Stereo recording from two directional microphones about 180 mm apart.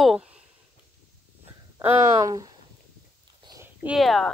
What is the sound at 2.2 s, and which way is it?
Speech, 20° right (ahead or behind).